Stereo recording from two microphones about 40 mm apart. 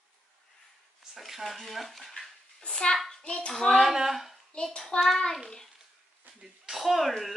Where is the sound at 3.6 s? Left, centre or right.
Centre.